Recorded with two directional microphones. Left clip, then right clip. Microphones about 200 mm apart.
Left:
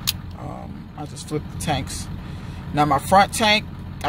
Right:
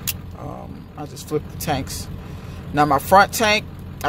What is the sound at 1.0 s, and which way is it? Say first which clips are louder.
Speech: right 4 dB; 5° right (ahead or behind).